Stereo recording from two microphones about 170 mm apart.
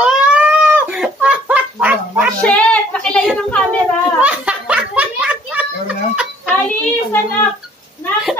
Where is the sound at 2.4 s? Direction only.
5° left (ahead or behind).